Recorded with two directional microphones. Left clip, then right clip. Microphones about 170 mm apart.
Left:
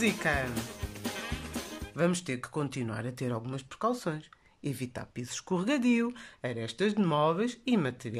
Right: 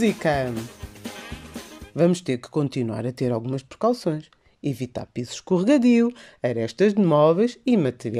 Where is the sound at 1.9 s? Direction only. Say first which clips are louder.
Right 9 dB; 25° right (ahead or behind).